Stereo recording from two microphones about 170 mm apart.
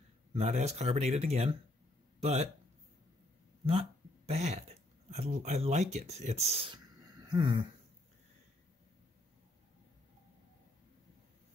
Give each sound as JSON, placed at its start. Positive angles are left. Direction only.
{"t": 0.3, "sound": "speech", "side_deg": -40}
{"t": 4.3, "sound": "speech", "side_deg": -40}